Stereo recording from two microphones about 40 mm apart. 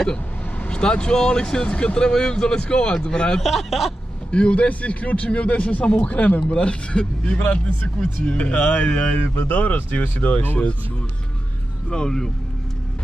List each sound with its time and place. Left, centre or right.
0.7 s speech: left
3.4 s speech: centre
4.3 s a man's voice: left
7.3 s a man's voice: left
11.9 s speech: centre